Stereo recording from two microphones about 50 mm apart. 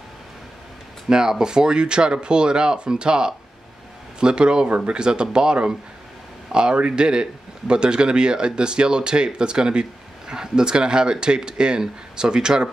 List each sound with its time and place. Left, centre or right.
1.0 s a man's voice: centre